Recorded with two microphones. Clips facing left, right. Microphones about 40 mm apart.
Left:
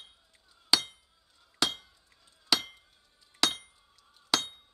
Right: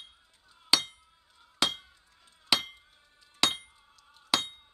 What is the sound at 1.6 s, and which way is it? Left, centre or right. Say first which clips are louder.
Chink: right 1 dB; right.